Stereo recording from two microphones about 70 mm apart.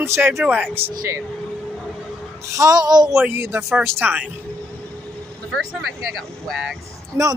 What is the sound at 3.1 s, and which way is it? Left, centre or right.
Speech, right.